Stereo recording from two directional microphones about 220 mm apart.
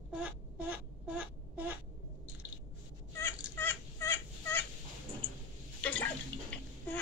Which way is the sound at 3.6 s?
10° left (ahead or behind).